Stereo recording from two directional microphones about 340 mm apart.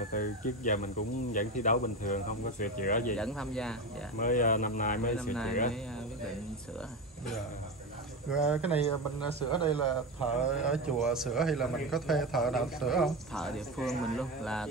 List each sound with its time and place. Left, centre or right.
0.1 s speech: left
3.2 s a man's voice: centre
4.2 s speech: left
5.1 s a man's voice: centre
8.5 s a man's voice: centre
8.7 s speech: centre
10.6 s a man's voice: centre